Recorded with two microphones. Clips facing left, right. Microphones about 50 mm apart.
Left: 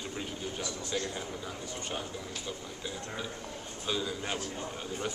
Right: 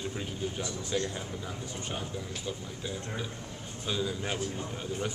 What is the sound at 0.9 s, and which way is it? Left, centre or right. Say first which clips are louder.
Speech: right 3 dB; centre.